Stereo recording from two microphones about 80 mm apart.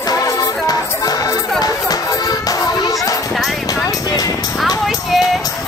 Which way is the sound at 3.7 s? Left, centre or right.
Left.